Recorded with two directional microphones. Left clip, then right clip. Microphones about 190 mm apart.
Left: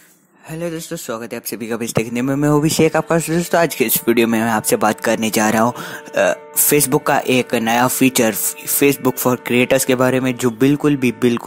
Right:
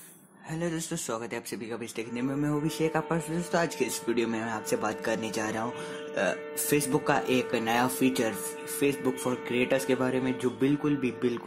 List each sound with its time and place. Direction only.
0.6 s speech: 25° left (ahead or behind)
1.7 s speech: 40° left (ahead or behind)